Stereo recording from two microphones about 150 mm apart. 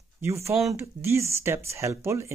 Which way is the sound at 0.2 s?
15° right (ahead or behind).